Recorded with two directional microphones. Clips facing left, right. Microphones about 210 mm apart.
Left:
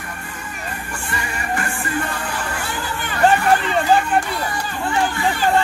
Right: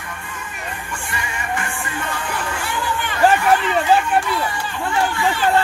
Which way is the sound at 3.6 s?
35° left (ahead or behind).